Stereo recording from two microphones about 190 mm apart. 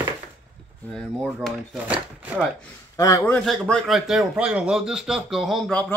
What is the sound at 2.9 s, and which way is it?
Speech, 20° left (ahead or behind).